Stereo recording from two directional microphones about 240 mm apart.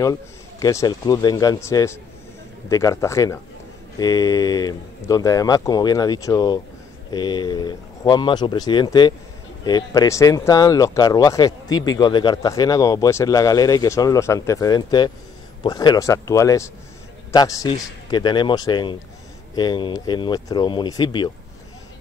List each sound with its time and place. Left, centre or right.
0.0 s speech: centre